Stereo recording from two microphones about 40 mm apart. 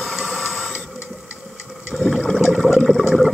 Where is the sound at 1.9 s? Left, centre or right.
Centre.